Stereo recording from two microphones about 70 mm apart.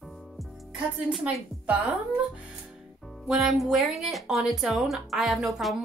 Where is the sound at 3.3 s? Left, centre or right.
Centre.